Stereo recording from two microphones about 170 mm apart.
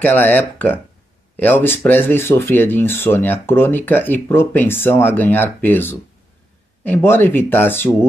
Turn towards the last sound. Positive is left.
turn(degrees=10)  # may be behind; listen again after turning